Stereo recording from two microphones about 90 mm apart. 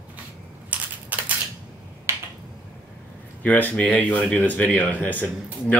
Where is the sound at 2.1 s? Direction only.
30° right (ahead or behind).